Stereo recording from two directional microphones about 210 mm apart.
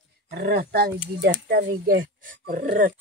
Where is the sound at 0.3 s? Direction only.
50° right (ahead or behind).